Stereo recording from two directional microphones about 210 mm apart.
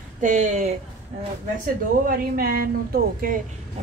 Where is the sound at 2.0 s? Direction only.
45° right (ahead or behind).